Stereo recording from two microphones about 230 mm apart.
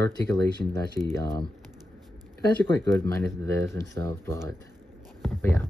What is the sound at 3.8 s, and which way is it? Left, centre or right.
Speech, centre.